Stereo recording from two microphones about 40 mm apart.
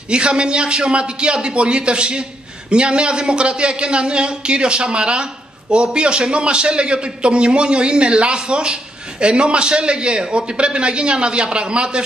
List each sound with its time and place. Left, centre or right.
0.1 s speech: right